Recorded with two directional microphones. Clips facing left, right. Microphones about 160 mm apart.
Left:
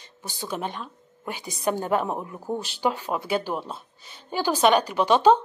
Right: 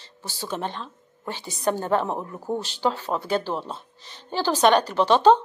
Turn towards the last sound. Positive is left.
turn(degrees=10)  # may be behind; listen again after turning